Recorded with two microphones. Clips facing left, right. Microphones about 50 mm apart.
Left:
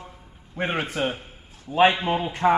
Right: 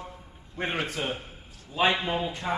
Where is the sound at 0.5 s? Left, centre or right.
Left.